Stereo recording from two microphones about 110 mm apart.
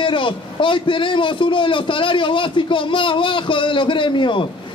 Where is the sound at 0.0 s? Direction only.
50° left (ahead or behind).